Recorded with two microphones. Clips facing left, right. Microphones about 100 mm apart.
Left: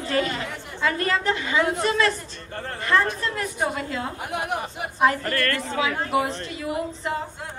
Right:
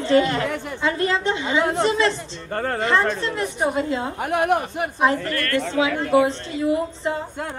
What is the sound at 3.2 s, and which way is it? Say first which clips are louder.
Speech: right 3 dB; 25° right (ahead or behind).